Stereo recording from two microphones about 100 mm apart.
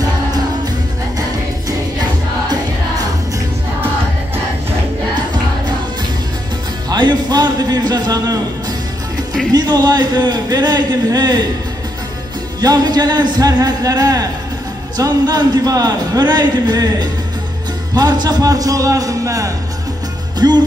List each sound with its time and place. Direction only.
2.5 s music: 40° right (ahead or behind)
6.9 s music: 45° right (ahead or behind)
9.5 s a man's voice: 40° right (ahead or behind)
12.5 s a man's voice: 40° right (ahead or behind)
20.3 s music: 45° right (ahead or behind)